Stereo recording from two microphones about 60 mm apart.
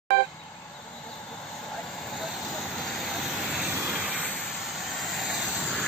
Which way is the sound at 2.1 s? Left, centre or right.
Centre.